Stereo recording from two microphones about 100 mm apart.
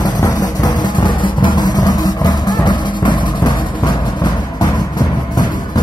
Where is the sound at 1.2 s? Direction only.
50° left (ahead or behind).